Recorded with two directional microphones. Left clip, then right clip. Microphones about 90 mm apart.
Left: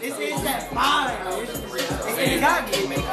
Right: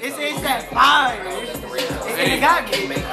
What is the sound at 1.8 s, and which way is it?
Music, 25° right (ahead or behind).